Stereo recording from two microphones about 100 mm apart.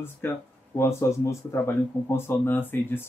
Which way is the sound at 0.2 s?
20° left (ahead or behind).